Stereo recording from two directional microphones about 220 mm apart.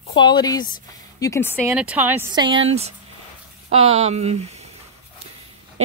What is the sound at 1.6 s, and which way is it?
Speech, 5° right (ahead or behind).